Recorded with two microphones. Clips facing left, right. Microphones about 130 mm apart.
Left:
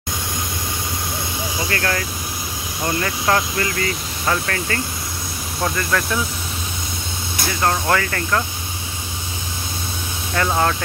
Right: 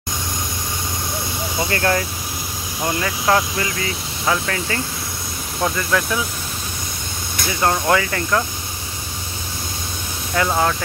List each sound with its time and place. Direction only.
1.7 s speech: 20° right (ahead or behind)
3.3 s speech: 15° right (ahead or behind)
7.6 s speech: 15° right (ahead or behind)
10.3 s speech: 5° right (ahead or behind)